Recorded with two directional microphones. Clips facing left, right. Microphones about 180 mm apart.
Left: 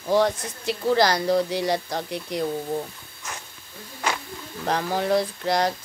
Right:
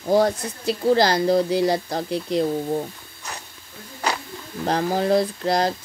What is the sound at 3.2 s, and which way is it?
Hiss, 35° right (ahead or behind).